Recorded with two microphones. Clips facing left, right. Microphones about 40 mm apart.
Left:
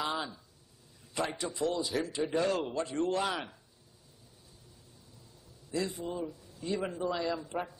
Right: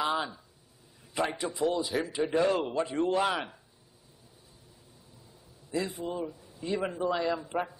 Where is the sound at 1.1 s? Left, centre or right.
Centre.